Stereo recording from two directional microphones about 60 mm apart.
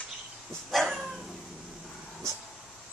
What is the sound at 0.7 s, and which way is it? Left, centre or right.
Dog, centre.